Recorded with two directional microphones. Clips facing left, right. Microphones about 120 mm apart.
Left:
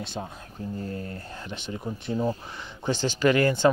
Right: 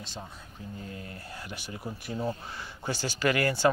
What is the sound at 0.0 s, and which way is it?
Speech, 60° left (ahead or behind).